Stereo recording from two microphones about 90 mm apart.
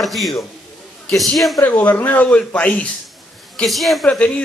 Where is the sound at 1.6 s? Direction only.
20° left (ahead or behind).